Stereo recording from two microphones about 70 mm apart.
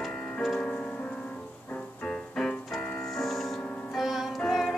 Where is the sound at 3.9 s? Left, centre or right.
Centre.